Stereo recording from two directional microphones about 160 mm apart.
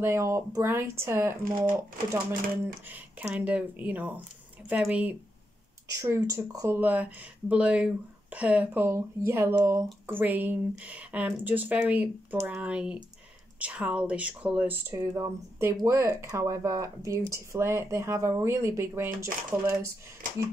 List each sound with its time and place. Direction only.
0.0 s speech: 15° right (ahead or behind)
2.9 s speech: 10° right (ahead or behind)
5.9 s speech: 20° right (ahead or behind)
19.0 s speech: 60° right (ahead or behind)